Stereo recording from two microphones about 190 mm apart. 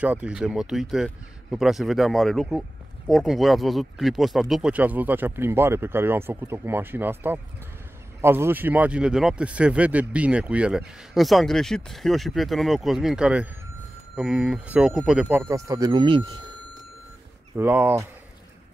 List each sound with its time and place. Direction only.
0.0 s speech: 5° right (ahead or behind); by 16.3 s 25° right (ahead or behind)
17.6 s speech: 10° right (ahead or behind)